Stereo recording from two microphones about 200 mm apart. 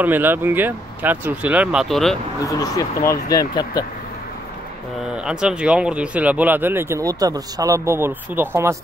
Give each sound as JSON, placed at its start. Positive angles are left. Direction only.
{"t": 0.0, "sound": "speech", "side_deg": -10}
{"t": 2.4, "sound": "speech", "side_deg": 20}
{"t": 5.0, "sound": "speech", "side_deg": -5}